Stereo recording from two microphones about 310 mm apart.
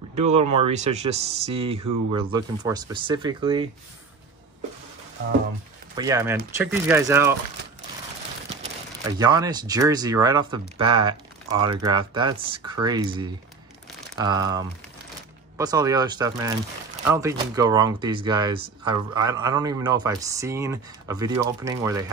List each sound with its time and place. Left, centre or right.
0.1 s speech: right
5.9 s a man's voice: centre
9.0 s a man's voice: centre